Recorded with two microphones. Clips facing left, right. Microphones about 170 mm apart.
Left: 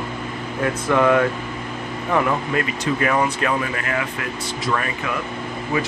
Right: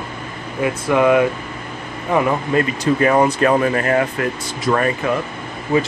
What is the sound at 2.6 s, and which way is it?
Speech, 35° right (ahead or behind).